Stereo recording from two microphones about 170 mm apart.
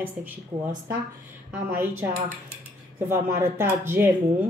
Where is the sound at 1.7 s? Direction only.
10° right (ahead or behind).